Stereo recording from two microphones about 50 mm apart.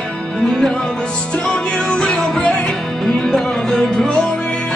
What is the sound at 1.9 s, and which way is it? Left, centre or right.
Music, left.